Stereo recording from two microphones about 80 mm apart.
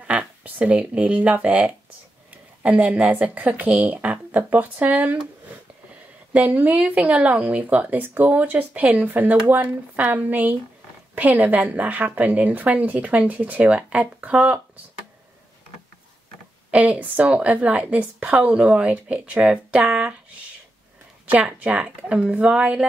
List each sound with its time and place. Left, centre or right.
0.0 s speech: centre
6.3 s speech: centre
16.7 s a woman's voice: centre
21.3 s a woman's voice: centre